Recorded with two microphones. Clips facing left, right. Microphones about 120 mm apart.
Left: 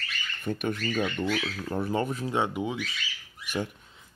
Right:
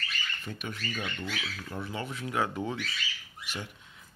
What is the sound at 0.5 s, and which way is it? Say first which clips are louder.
Speech: left 11 dB; 50° left (ahead or behind).